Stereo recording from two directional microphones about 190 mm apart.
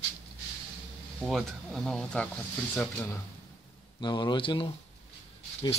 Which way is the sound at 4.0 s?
25° left (ahead or behind).